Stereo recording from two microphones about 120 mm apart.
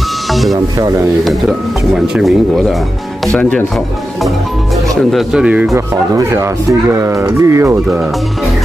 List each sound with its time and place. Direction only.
0.3 s music: centre (ahead or behind)
2.0 s speech: centre (ahead or behind)
3.3 s speech: 10° left (ahead or behind)
5.1 s speech: 5° right (ahead or behind)
6.1 s speech: 25° right (ahead or behind)